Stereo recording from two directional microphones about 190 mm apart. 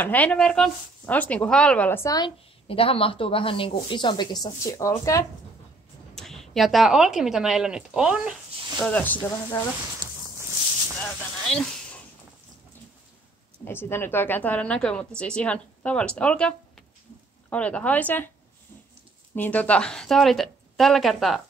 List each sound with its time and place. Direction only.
0.0 s speech: 10° left (ahead or behind)
6.1 s speech: centre (ahead or behind)
8.7 s speech: 10° left (ahead or behind)
11.0 s a sound: 5° left (ahead or behind)
13.7 s speech: 10° left (ahead or behind)
19.3 s speech: 10° left (ahead or behind)